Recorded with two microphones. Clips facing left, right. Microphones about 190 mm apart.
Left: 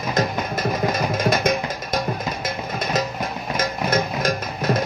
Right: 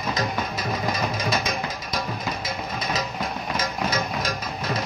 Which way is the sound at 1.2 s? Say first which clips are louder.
Left 6 dB; 50° left (ahead or behind).